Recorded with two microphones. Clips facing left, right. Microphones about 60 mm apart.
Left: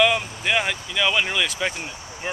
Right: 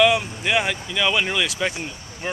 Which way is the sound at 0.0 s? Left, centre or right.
Centre.